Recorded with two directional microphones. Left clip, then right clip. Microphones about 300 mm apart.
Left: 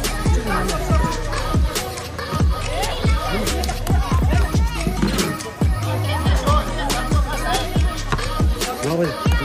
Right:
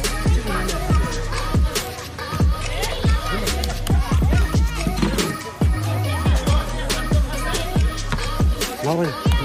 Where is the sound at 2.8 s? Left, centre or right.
Centre.